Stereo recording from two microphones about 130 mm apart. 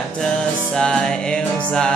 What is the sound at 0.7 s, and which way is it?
Music, 5° left (ahead or behind).